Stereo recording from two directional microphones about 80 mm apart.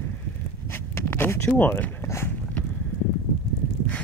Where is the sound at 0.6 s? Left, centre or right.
Left.